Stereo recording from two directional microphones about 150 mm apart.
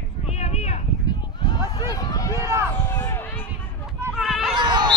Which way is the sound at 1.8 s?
25° left (ahead or behind).